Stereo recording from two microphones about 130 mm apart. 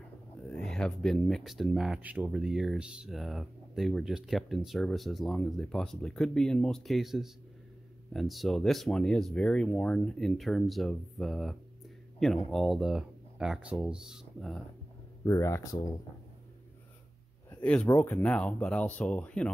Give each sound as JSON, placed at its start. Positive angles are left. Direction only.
{"t": 0.4, "sound": "speech", "side_deg": 5}
{"t": 15.2, "sound": "speech", "side_deg": 20}
{"t": 17.5, "sound": "speech", "side_deg": 10}